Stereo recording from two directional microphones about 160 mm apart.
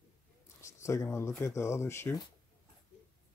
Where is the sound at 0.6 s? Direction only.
20° left (ahead or behind).